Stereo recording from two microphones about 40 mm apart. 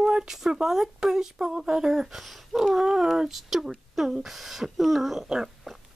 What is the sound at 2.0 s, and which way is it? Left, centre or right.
Speech, centre.